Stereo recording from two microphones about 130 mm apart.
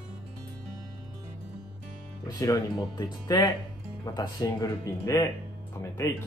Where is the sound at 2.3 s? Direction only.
25° left (ahead or behind).